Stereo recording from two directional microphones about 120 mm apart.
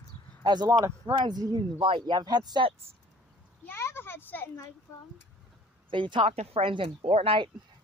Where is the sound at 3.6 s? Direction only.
20° left (ahead or behind).